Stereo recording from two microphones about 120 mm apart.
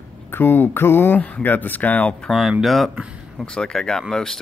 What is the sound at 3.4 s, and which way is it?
Speech, 5° left (ahead or behind).